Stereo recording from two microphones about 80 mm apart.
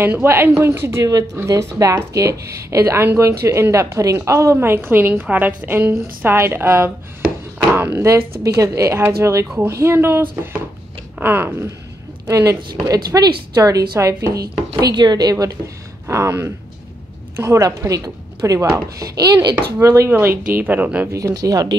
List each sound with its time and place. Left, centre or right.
0.0 s a woman's voice: right
8.0 s a woman's voice: right
12.3 s speech: right
15.0 s speech: right
17.6 s speech: right
20.1 s a woman's voice: right
21.1 s speech: right